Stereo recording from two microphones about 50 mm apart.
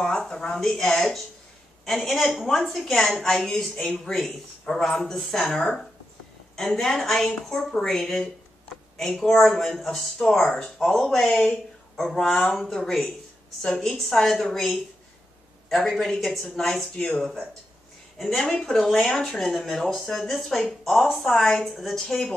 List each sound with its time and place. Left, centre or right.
0.0 s a woman's voice: centre
1.9 s a woman's voice: centre
15.9 s speech: centre
16.9 s a woman's voice: centre